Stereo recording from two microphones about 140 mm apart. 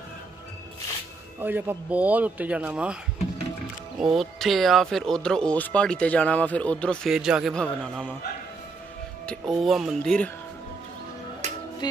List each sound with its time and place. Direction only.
1.4 s speech: 15° right (ahead or behind)
4.0 s speech: centre (ahead or behind)
7.1 s speech: 5° right (ahead or behind)
9.2 s speech: 5° left (ahead or behind)
11.4 s music: 55° right (ahead or behind)
11.8 s music: 30° left (ahead or behind)